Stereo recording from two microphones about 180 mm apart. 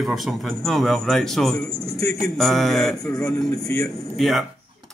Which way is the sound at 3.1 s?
15° left (ahead or behind).